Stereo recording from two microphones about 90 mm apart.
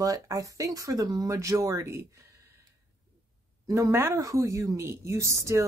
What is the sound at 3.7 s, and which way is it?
Speech, 30° right (ahead or behind).